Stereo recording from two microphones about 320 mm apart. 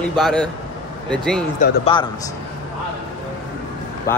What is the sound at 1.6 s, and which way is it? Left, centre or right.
Speech, left.